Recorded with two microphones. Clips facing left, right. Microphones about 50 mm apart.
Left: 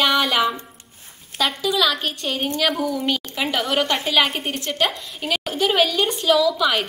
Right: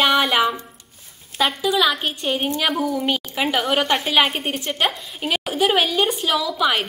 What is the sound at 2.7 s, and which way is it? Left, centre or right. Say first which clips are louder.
A woman's voice: right 1 dB; centre.